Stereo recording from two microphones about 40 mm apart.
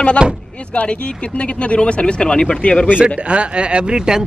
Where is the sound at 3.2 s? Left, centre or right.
Right.